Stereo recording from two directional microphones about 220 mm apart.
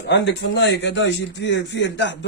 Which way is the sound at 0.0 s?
50° left (ahead or behind).